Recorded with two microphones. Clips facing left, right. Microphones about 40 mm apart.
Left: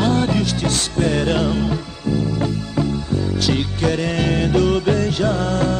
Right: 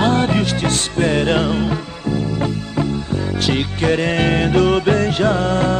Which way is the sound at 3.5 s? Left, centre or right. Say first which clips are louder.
Right 3 dB; right.